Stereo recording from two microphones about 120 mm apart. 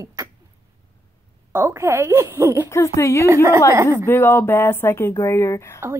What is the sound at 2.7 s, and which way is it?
Speech, 25° left (ahead or behind).